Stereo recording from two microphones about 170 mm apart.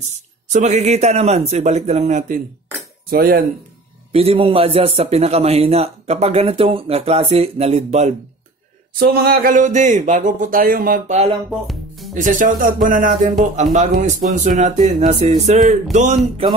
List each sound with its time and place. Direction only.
0.5 s a man's voice: 45° right (ahead or behind)
3.1 s speech: 60° right (ahead or behind)
4.1 s a man's voice: 35° right (ahead or behind)
9.0 s speech: 65° right (ahead or behind)
11.6 s music: centre (ahead or behind)
12.1 s speech: 50° right (ahead or behind)